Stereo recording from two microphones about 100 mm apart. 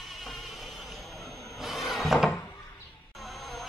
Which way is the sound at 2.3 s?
20° left (ahead or behind).